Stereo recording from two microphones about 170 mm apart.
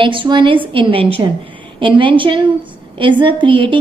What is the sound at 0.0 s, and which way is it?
A woman's voice, 30° right (ahead or behind).